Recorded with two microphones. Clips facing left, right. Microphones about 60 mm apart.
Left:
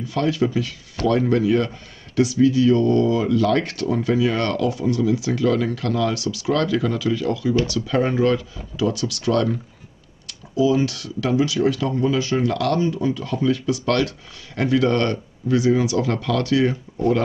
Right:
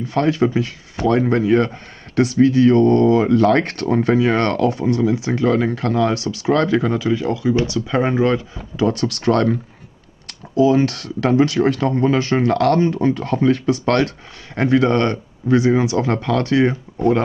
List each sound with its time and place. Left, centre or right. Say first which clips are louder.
0.0 s speech: right 4 dB; right